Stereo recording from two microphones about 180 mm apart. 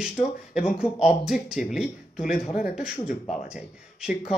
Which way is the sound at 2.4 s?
45° left (ahead or behind).